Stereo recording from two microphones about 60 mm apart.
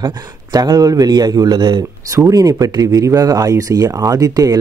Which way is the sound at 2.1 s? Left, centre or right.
Right.